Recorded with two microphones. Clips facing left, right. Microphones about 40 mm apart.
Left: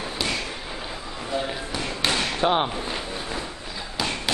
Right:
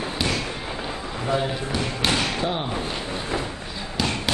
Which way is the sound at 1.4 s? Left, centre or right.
Centre.